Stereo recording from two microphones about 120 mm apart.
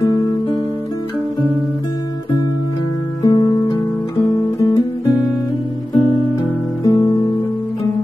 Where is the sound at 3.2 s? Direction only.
30° left (ahead or behind).